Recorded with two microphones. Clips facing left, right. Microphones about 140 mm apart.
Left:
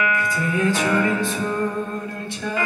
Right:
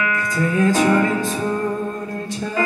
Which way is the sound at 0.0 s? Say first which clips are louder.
Right 1 dB; 30° right (ahead or behind).